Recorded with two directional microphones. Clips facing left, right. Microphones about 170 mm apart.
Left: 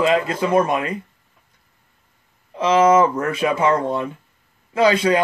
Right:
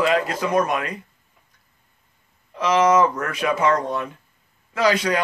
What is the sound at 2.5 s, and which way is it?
A man's voice, 25° left (ahead or behind).